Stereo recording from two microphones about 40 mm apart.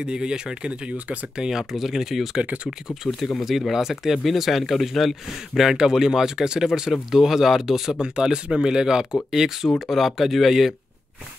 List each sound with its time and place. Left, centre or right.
0.0 s speech: right
1.5 s speech: centre
3.3 s speech: centre
5.6 s speech: centre